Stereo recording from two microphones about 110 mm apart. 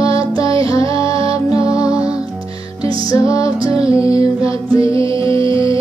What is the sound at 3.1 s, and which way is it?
Music, 30° left (ahead or behind).